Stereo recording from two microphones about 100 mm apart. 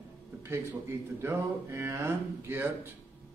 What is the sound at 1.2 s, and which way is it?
A man's voice, 25° right (ahead or behind).